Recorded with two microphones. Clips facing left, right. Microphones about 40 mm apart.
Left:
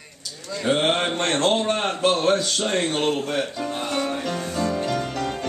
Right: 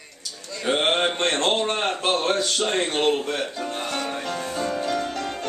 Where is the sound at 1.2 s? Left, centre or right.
Centre.